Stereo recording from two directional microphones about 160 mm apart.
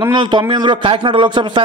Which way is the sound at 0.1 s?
30° right (ahead or behind).